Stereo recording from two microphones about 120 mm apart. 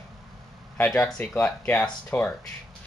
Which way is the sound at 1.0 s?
15° left (ahead or behind).